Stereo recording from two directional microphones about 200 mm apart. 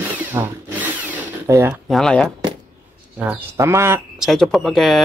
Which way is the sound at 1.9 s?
5° left (ahead or behind).